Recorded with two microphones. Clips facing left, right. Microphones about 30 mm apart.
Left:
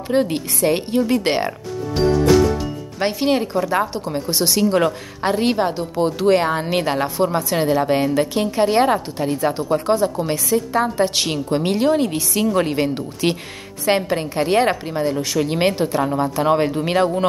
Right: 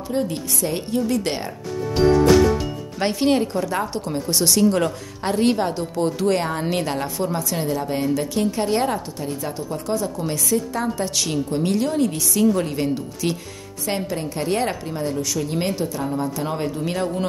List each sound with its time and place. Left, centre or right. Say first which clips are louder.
0.1 s a woman's voice: left 5 dB; left
2.0 s music: right 1 dB; centre
3.0 s a woman's voice: left 1 dB; centre; by 9.9 s left
9.9 s a woman's voice: left 5 dB; left
16.1 s a woman's voice: left 7 dB; left